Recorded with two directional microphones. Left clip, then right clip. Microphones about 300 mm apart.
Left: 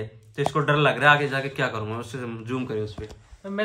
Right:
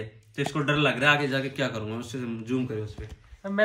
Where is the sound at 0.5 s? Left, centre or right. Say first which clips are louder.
Left 4 dB; centre.